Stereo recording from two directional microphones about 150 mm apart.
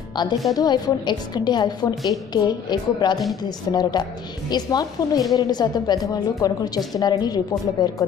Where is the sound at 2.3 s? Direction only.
30° left (ahead or behind).